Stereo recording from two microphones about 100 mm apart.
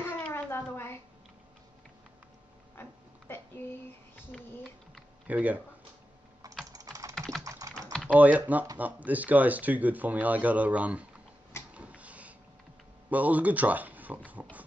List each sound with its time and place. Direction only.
0.2 s a sound: 25° left (ahead or behind)
2.8 s a sound: 20° left (ahead or behind)
5.3 s speech: 15° right (ahead or behind)
6.7 s typing: 35° right (ahead or behind)
7.2 s typing: 5° left (ahead or behind)
7.4 s typing: 35° right (ahead or behind)
8.1 s speech: 15° right (ahead or behind)
11.7 s a sound: 15° right (ahead or behind)
13.1 s speech: 15° right (ahead or behind)